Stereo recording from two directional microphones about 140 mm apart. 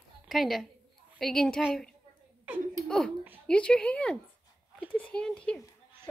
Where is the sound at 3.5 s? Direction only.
5° left (ahead or behind).